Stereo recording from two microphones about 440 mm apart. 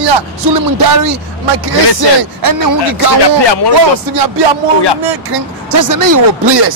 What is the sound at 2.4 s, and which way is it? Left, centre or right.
Speech, right.